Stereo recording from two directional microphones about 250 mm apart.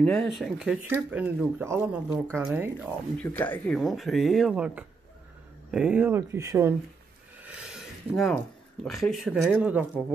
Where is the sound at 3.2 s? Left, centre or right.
Centre.